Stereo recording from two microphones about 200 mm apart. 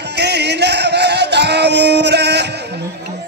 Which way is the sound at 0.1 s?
55° right (ahead or behind).